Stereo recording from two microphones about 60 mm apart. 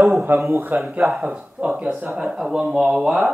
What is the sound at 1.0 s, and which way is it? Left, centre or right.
A man's voice, centre.